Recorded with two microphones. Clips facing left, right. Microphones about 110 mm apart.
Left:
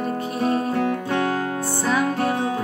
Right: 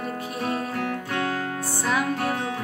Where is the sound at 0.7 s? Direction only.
25° left (ahead or behind).